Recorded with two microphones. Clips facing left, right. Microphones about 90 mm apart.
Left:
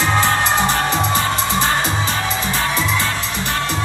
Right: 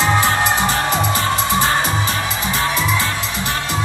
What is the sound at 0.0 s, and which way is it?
Music, 15° right (ahead or behind).